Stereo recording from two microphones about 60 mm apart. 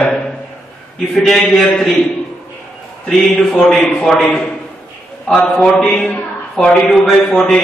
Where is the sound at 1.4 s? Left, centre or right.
Centre.